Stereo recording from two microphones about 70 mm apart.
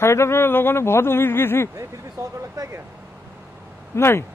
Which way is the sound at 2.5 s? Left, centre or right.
Right.